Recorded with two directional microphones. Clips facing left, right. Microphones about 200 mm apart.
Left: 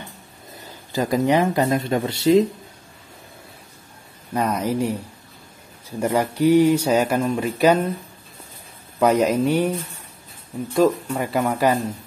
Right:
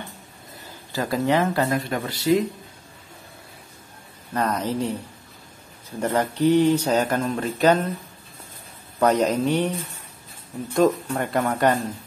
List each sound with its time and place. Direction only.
0.9 s speech: 15° left (ahead or behind)
4.3 s speech: 10° left (ahead or behind)
9.0 s speech: 10° left (ahead or behind)
10.7 s speech: 5° left (ahead or behind)